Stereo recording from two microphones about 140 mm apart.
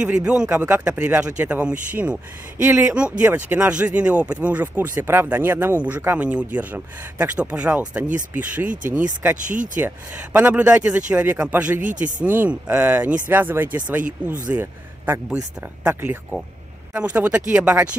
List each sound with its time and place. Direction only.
0.0 s speech: 5° right (ahead or behind)
9.2 s speech: 15° right (ahead or behind)
11.8 s speech: 65° right (ahead or behind)
12.2 s a man's voice: 10° right (ahead or behind)
15.9 s speech: 15° right (ahead or behind)